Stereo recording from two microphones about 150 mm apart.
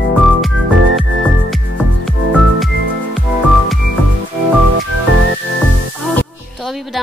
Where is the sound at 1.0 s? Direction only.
Centre (ahead or behind).